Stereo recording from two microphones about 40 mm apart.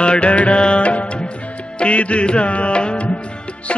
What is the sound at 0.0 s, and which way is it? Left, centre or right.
Music, left.